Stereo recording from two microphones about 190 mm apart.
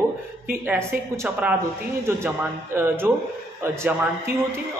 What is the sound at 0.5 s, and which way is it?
A man's voice, 15° right (ahead or behind).